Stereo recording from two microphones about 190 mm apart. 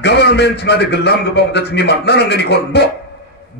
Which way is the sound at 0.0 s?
60° left (ahead or behind).